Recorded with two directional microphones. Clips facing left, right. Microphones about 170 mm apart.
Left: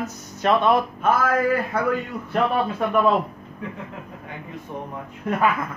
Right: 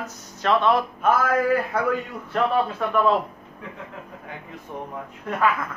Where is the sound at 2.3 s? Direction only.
15° left (ahead or behind).